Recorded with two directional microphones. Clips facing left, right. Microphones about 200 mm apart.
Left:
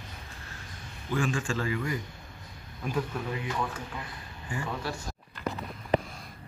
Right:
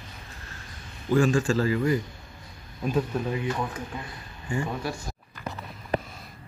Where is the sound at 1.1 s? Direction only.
40° right (ahead or behind).